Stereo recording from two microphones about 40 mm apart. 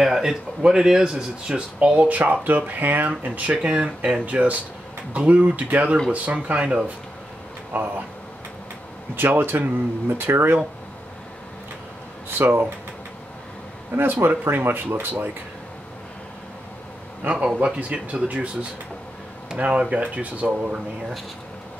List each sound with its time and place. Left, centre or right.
0.0 s a sound: centre
0.6 s speech: right
3.1 s speech: right
7.7 s speech: right
9.2 s speech: right
12.3 s speech: right
13.9 s speech: right
17.2 s speech: right